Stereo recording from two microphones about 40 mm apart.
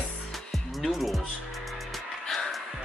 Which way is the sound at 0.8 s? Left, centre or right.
Centre.